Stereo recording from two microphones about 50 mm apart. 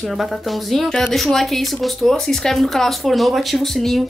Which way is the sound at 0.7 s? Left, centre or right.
Centre.